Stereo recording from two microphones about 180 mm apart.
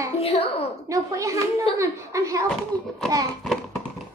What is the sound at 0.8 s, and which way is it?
A child's voice, 15° right (ahead or behind).